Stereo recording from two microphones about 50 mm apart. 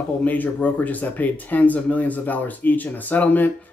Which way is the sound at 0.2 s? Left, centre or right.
Left.